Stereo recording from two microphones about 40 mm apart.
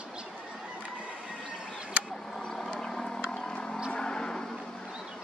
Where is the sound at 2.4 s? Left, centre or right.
Centre.